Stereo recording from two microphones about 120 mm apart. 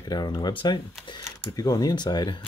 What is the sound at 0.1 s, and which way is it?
Speech, 35° left (ahead or behind).